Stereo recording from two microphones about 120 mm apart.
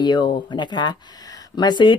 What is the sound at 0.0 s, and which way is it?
Speech, 40° left (ahead or behind).